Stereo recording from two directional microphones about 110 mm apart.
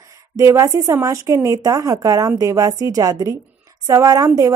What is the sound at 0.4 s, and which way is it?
Speech, 30° right (ahead or behind).